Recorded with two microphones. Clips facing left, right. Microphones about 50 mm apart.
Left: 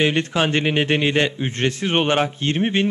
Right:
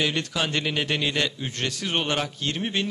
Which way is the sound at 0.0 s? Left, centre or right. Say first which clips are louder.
Left 7 dB; left.